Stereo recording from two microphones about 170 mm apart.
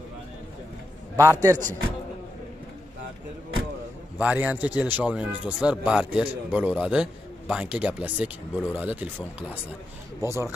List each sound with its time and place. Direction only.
1.1 s a man's voice: 20° right (ahead or behind)
4.2 s speech: 10° right (ahead or behind)